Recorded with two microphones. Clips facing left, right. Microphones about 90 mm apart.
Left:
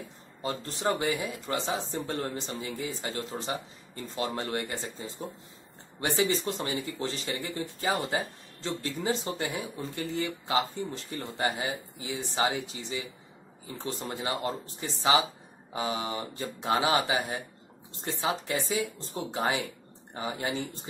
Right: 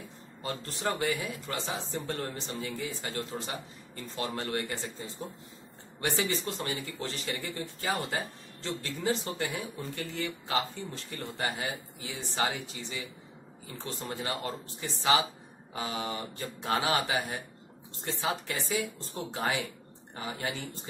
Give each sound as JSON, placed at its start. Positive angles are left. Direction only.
{"t": 0.4, "sound": "a man's voice", "side_deg": 25}